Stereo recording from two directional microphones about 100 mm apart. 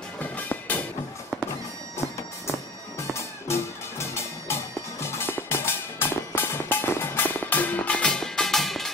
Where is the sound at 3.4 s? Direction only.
25° left (ahead or behind).